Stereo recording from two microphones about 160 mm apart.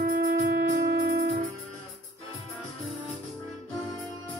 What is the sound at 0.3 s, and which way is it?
Wind instrument, 65° right (ahead or behind).